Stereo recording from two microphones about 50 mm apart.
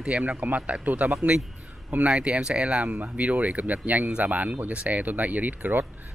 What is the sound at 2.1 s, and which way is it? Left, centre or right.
Speech, centre.